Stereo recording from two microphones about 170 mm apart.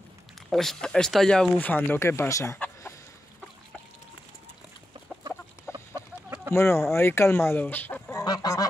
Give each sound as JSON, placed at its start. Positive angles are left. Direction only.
{"t": 0.5, "sound": "speech", "side_deg": 5}
{"t": 5.9, "sound": "chicken", "side_deg": -15}
{"t": 6.5, "sound": "speech", "side_deg": 15}